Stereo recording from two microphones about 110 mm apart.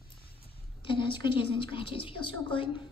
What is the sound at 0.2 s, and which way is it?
Speech, 55° left (ahead or behind).